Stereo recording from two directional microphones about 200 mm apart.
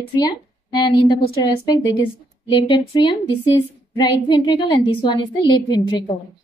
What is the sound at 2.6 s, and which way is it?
A woman's voice, 25° left (ahead or behind).